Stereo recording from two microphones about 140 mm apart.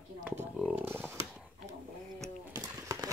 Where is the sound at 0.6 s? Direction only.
10° right (ahead or behind).